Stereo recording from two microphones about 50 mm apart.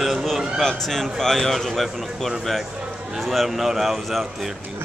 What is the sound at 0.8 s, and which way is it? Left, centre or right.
Speech, centre.